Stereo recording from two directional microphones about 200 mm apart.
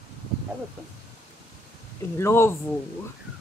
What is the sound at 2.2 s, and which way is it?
Speech, 10° left (ahead or behind).